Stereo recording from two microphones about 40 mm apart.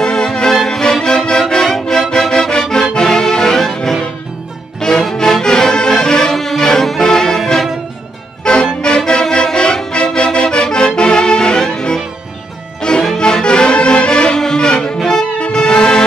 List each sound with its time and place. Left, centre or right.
0.0 s music: centre
8.5 s music: left